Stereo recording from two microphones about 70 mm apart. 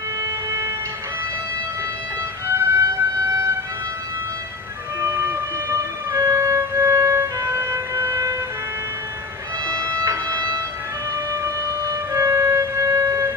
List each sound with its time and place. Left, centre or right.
0.2 s vehicle: right
2.4 s music: right
5.0 s music: right
9.7 s a sound: right
11.4 s wind instrument: right